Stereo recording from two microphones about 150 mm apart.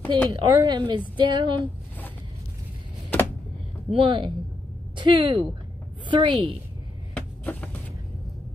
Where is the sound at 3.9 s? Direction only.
35° right (ahead or behind).